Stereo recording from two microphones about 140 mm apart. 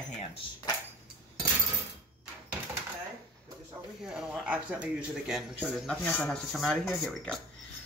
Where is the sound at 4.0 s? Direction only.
5° right (ahead or behind).